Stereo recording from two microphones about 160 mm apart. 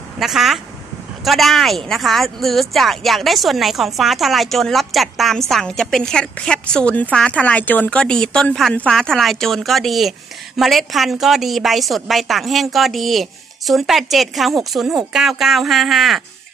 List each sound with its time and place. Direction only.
0.2 s a woman's voice: centre (ahead or behind)